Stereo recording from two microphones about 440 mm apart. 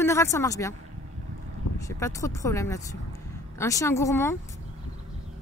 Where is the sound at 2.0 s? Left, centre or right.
Centre.